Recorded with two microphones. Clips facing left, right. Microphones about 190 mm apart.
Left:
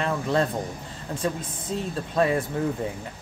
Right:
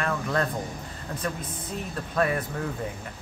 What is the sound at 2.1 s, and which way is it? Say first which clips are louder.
Speech: left 3 dB; 25° left (ahead or behind).